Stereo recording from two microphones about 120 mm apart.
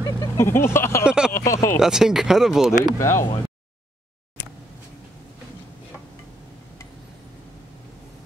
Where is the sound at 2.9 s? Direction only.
25° left (ahead or behind).